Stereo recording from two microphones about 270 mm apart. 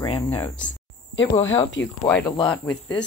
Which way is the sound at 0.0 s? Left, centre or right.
Centre.